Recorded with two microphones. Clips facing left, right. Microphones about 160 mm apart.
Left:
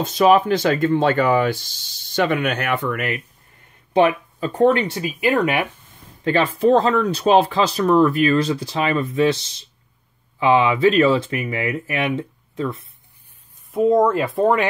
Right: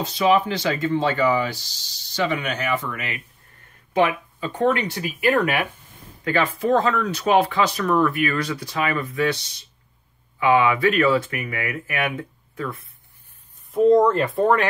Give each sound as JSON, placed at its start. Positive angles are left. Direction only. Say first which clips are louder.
{"t": 0.0, "sound": "speech", "louder": "left 4 dB", "side_deg": 50}
{"t": 3.9, "sound": "speech", "louder": "left 4 dB", "side_deg": 35}
{"t": 5.3, "sound": "speech", "louder": "left 1 dB", "side_deg": 20}
{"t": 6.2, "sound": "speech", "louder": "left 5 dB", "side_deg": 35}
{"t": 13.7, "sound": "speech", "louder": "even", "side_deg": 5}